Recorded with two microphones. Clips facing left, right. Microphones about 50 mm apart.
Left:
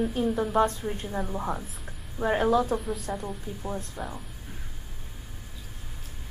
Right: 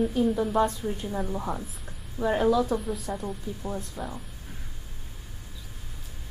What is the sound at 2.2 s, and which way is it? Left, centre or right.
Speech, left.